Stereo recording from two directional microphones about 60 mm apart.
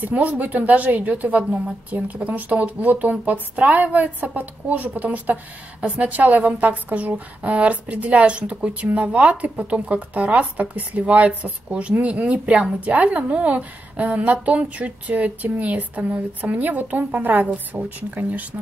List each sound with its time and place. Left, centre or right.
0.0 s a woman's voice: right